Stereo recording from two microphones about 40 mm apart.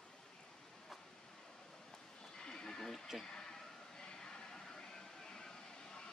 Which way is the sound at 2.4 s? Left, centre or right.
Centre.